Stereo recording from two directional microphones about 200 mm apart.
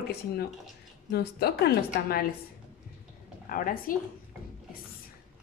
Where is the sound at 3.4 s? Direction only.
45° left (ahead or behind).